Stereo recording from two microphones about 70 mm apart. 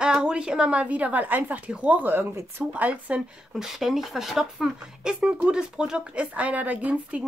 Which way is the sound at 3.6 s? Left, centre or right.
Centre.